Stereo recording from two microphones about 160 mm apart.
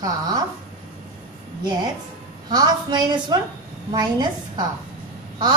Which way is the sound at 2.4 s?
25° right (ahead or behind).